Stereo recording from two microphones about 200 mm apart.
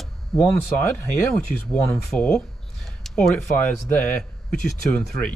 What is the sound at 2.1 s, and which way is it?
Speech, 5° left (ahead or behind).